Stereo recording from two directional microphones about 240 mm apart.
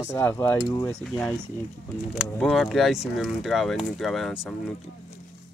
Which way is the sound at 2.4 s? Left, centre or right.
Centre.